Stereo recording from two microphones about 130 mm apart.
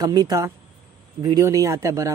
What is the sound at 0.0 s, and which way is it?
Speech, 30° right (ahead or behind).